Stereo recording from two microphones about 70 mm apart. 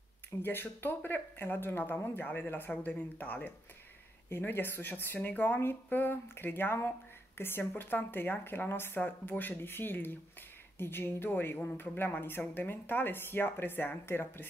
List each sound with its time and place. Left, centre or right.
0.4 s a woman's voice: left